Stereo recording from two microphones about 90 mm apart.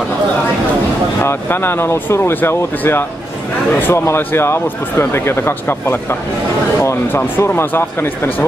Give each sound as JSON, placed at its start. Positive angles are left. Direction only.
{"t": 1.2, "sound": "speech", "side_deg": 25}